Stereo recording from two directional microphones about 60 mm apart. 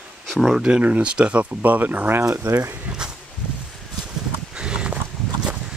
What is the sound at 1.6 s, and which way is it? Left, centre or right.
Speech, right.